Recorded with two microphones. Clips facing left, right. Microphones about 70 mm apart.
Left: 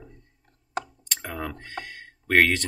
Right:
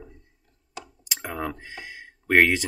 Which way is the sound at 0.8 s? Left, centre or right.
Left.